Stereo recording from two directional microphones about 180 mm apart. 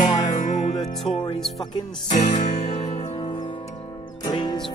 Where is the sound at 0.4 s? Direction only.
45° left (ahead or behind).